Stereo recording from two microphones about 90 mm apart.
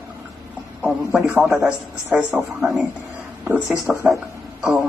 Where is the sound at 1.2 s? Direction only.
Centre (ahead or behind).